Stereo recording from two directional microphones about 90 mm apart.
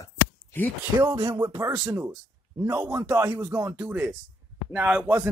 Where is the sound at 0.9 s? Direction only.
50° right (ahead or behind).